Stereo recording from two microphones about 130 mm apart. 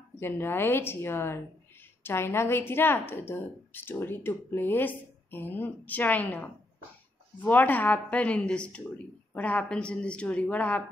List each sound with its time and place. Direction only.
0.2 s speech: 20° left (ahead or behind)